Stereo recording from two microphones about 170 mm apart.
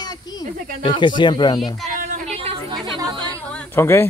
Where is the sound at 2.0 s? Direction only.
40° right (ahead or behind).